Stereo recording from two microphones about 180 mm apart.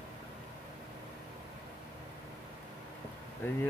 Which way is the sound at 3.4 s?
10° left (ahead or behind).